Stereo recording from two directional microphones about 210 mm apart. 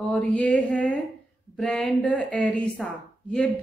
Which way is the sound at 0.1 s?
5° left (ahead or behind).